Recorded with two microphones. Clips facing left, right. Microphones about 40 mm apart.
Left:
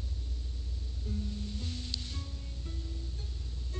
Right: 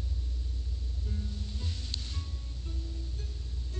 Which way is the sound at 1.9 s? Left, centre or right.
Right.